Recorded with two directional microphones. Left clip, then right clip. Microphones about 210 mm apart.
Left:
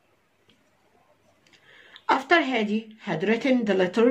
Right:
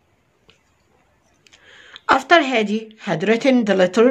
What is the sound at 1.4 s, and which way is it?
Speech, 40° right (ahead or behind).